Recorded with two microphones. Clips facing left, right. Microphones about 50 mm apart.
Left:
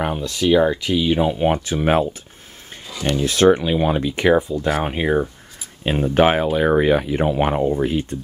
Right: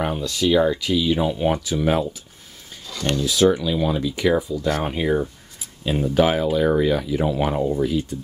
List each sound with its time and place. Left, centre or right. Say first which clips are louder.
0.0 s speech: left 1 dB; centre
1.6 s speech: left 3 dB; left
3.3 s speech: left 4 dB; left
4.8 s speech: left 2 dB; left
5.9 s speech: left 3 dB; left